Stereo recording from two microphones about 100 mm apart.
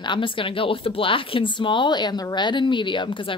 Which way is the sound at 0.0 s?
55° left (ahead or behind).